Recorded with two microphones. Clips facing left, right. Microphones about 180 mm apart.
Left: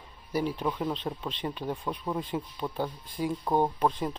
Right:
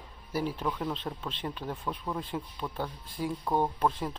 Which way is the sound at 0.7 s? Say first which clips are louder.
Left 2 dB; 10° left (ahead or behind).